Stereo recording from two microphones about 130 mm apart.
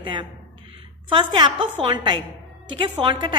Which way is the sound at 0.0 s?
40° right (ahead or behind).